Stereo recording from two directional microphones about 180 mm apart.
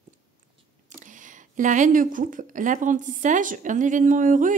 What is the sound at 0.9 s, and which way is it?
Speech, 45° right (ahead or behind).